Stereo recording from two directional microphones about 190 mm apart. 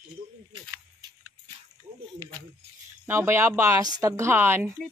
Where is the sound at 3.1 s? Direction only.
15° right (ahead or behind).